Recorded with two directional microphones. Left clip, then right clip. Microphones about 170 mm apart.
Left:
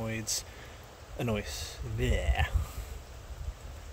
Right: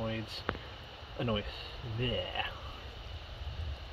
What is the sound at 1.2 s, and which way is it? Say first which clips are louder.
Speech: left 1 dB; 30° left (ahead or behind).